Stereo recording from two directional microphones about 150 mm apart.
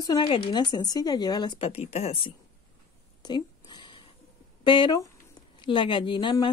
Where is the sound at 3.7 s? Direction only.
30° left (ahead or behind).